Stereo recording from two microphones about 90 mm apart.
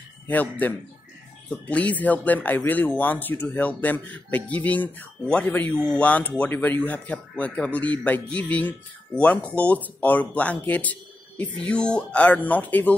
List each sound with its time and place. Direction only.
0.3 s a man's voice: 20° left (ahead or behind)